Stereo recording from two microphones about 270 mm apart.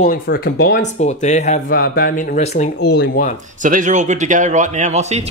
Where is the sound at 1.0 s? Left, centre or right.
Left.